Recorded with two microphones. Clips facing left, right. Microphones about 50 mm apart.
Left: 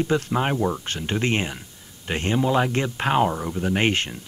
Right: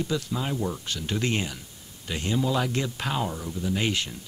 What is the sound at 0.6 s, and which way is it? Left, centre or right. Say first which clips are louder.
Speech: left 6 dB; left.